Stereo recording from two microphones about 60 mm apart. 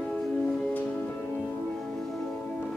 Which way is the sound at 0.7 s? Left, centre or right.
Left.